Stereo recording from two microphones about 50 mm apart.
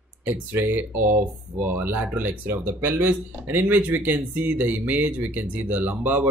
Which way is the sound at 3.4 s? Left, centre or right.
Right.